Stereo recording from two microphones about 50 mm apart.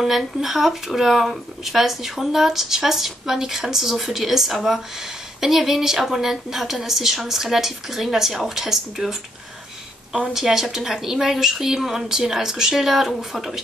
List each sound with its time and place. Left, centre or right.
0.0 s speech: centre
10.3 s a woman's voice: centre